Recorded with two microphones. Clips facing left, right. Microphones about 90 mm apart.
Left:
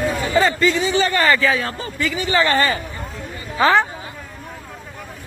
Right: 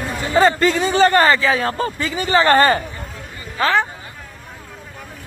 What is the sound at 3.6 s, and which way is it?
Speech, 5° left (ahead or behind).